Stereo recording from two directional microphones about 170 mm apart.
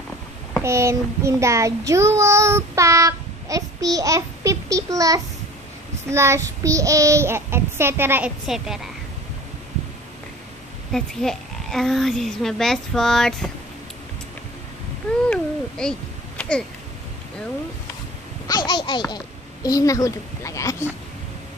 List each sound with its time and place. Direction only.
0.6 s child singing: 15° right (ahead or behind)
8.5 s speech: 5° right (ahead or behind)
10.9 s speech: centre (ahead or behind)
15.2 s a sound: 5° left (ahead or behind)
18.5 s a child's voice: 25° left (ahead or behind)